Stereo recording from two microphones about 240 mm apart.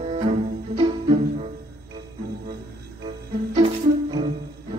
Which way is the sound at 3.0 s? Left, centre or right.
Right.